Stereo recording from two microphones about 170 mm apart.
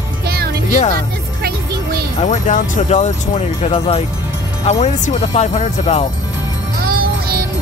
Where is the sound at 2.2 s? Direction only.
45° left (ahead or behind).